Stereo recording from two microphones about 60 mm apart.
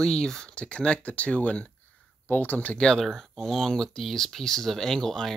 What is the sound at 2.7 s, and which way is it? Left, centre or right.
Speech, centre.